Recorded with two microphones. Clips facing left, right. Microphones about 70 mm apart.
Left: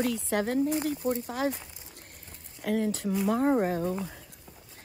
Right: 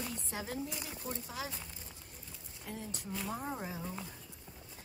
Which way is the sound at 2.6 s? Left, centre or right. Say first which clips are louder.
Left 16 dB; left.